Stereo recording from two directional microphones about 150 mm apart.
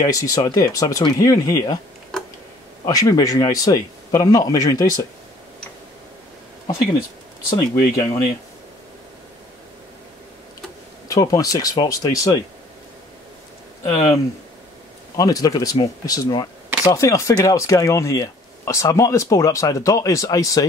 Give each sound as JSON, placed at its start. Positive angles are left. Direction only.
{"t": 0.0, "sound": "speech", "side_deg": 25}
{"t": 2.1, "sound": "tick", "side_deg": 0}
{"t": 2.8, "sound": "speech", "side_deg": 25}
{"t": 7.5, "sound": "speech", "side_deg": 20}
{"t": 11.1, "sound": "speech", "side_deg": 25}
{"t": 15.1, "sound": "speech", "side_deg": 25}